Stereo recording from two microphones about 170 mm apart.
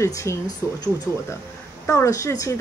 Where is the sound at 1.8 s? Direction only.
15° left (ahead or behind).